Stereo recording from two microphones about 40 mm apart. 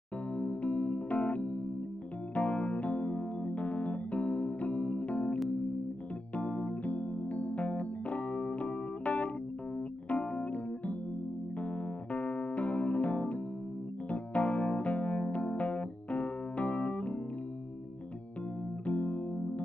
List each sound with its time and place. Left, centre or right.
0.3 s music: left
10.0 s keyboard: left
12.1 s electric piano: left
18.9 s music: left